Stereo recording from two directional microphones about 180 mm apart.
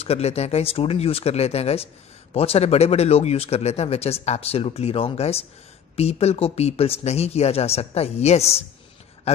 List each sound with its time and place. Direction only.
0.0 s speech: 35° left (ahead or behind)